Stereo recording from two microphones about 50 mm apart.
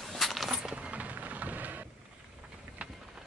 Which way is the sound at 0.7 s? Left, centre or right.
Right.